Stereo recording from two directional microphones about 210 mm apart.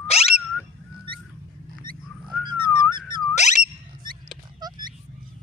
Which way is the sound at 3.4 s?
35° left (ahead or behind).